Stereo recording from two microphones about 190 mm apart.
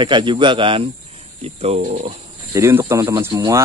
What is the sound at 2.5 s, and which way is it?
Speech, 15° right (ahead or behind).